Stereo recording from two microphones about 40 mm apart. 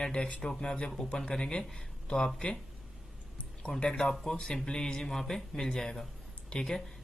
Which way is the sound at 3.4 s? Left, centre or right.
Left.